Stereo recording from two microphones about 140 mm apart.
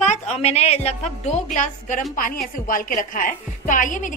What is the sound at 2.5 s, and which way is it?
Speech, 75° left (ahead or behind).